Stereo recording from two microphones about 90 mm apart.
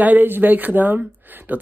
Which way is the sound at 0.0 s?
20° right (ahead or behind).